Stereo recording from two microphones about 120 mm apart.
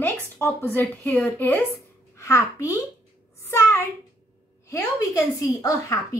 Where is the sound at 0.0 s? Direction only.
20° left (ahead or behind).